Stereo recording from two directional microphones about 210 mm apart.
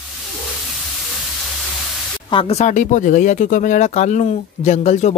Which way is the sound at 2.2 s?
25° left (ahead or behind).